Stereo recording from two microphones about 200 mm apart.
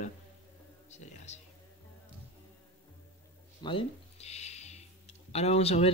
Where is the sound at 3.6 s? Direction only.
30° left (ahead or behind).